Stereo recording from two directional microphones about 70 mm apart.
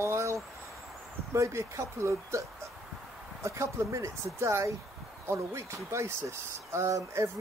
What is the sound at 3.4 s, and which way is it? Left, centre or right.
Speech, right.